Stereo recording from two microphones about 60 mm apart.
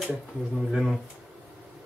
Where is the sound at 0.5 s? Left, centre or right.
Centre.